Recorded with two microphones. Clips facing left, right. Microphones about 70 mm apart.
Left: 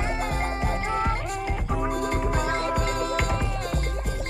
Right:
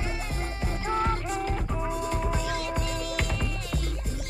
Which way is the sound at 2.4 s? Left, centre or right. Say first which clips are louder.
Left 5 dB; left.